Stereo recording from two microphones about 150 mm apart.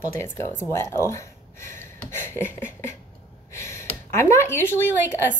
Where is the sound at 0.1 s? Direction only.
15° left (ahead or behind).